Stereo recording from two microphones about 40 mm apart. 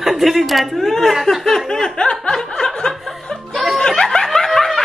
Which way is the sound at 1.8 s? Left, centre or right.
Centre.